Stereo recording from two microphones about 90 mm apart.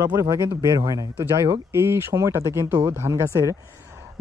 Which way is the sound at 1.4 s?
30° right (ahead or behind).